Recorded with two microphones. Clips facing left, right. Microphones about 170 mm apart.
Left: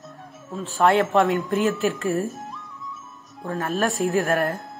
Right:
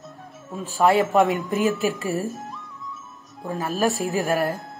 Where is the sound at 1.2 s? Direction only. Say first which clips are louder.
Even; 15° right (ahead or behind).